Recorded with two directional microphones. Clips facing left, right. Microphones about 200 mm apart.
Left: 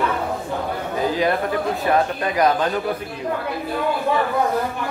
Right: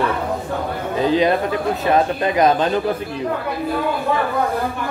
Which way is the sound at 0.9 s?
25° right (ahead or behind).